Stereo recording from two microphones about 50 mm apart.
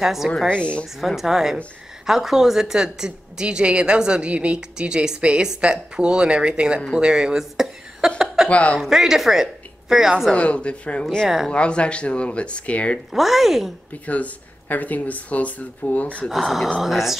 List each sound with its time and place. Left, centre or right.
0.0 s speech: centre
0.5 s speech: left
1.0 s a woman's voice: centre
8.5 s speech: left
8.7 s a woman's voice: centre
10.3 s speech: left
11.2 s a woman's voice: centre
11.5 s speech: left
13.1 s speech: centre
14.0 s speech: left
16.3 s speech: centre